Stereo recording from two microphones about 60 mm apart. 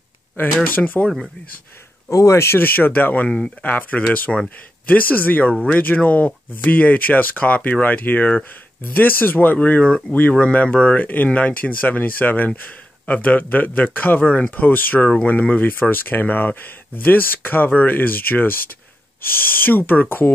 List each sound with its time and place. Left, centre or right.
0.7 s speech: left
2.0 s speech: left
3.3 s speech: centre
4.3 s speech: centre
4.8 s speech: left